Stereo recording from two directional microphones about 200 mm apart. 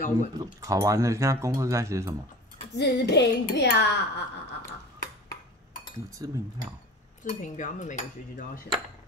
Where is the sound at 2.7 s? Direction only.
60° left (ahead or behind).